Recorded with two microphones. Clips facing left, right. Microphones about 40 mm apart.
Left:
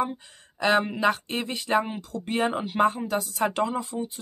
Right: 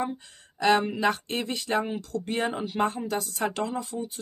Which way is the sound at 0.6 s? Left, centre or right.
Centre.